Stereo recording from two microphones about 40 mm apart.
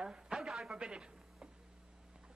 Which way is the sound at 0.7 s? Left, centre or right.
Right.